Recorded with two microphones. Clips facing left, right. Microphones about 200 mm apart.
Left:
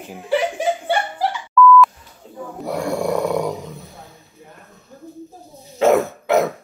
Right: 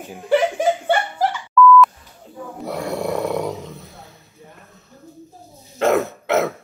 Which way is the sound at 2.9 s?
Centre (ahead or behind).